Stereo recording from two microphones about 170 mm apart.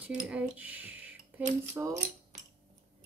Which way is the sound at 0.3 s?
10° right (ahead or behind).